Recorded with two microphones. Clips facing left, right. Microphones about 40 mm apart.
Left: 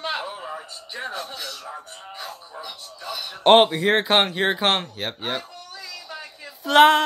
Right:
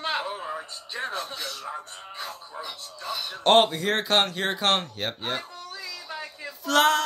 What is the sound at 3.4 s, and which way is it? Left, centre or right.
Speech, left.